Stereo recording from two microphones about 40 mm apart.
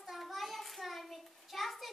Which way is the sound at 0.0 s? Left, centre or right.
Centre.